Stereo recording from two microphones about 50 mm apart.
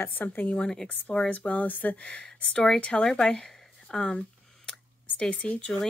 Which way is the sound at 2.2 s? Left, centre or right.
Centre.